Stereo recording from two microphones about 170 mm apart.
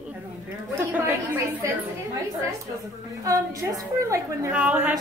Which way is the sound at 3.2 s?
20° right (ahead or behind).